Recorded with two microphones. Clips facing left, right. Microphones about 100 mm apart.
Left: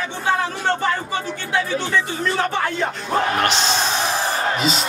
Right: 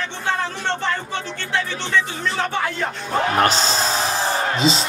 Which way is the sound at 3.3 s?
40° right (ahead or behind).